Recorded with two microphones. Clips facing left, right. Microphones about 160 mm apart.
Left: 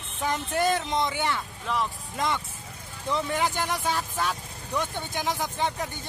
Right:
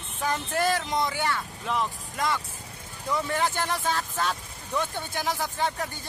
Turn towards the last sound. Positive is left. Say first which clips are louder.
# even
turn(degrees=20)  # may be behind; listen again after turning